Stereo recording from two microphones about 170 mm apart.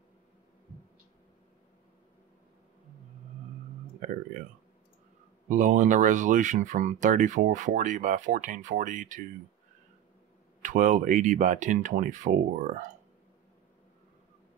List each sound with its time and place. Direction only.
5.5 s speech: 50° right (ahead or behind)
10.6 s speech: 50° right (ahead or behind)